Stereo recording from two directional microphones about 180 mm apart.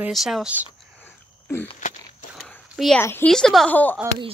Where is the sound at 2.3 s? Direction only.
Centre (ahead or behind).